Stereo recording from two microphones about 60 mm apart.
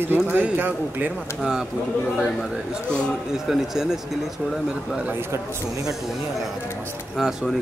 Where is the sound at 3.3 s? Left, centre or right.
Centre.